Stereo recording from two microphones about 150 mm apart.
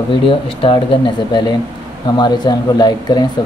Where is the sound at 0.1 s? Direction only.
35° left (ahead or behind).